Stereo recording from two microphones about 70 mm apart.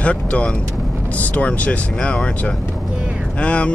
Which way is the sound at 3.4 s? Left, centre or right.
Centre.